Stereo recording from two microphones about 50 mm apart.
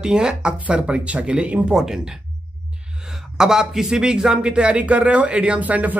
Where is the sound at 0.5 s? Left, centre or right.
Right.